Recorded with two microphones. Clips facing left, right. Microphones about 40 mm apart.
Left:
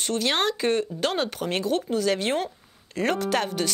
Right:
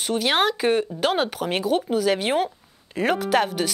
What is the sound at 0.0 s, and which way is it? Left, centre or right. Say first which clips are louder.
Speech: right 3 dB; centre.